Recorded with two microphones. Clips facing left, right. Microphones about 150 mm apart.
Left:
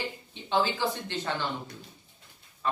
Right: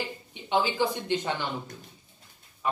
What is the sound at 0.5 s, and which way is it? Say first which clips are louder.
Speech: right 2 dB; 15° right (ahead or behind).